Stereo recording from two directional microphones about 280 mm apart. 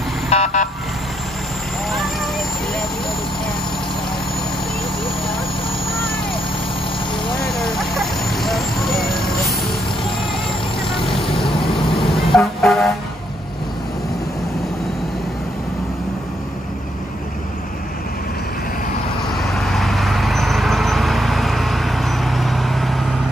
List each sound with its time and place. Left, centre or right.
0.3 s vehicle: left
7.3 s speech: centre
12.0 s vehicle: centre
19.3 s vehicle: centre